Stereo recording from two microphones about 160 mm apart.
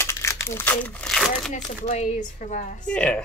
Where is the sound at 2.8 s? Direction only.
5° left (ahead or behind).